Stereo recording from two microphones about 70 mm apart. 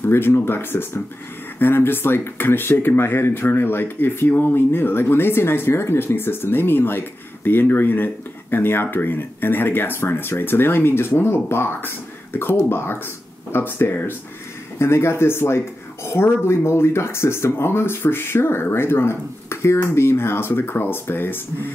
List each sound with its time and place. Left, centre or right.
0.0 s speech: left